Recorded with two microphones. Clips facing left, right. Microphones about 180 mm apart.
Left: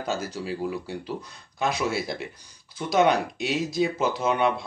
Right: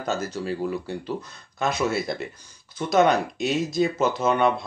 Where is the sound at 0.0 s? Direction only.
10° left (ahead or behind).